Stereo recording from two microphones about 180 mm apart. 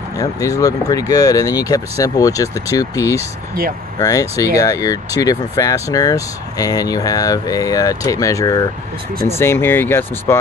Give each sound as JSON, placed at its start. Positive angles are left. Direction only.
{"t": 0.2, "sound": "speech", "side_deg": 20}